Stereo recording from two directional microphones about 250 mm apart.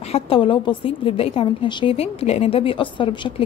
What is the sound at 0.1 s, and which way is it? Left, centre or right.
A woman's voice, left.